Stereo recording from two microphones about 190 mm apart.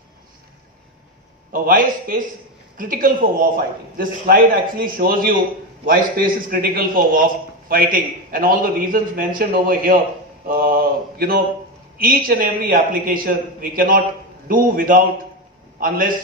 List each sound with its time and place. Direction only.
1.5 s a man's voice: 45° right (ahead or behind)